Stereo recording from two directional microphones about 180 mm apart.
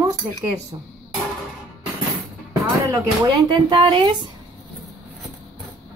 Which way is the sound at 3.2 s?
25° right (ahead or behind).